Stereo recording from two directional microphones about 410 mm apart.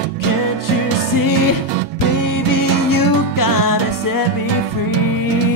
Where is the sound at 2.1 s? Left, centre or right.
Left.